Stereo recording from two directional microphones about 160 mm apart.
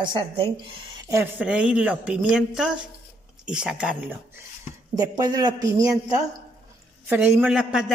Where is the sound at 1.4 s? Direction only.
5° right (ahead or behind).